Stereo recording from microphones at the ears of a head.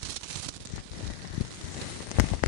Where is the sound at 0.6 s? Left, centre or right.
Left.